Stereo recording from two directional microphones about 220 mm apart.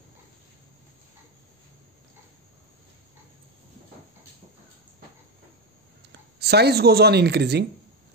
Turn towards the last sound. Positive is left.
turn(degrees=-50)  # may be behind; listen again after turning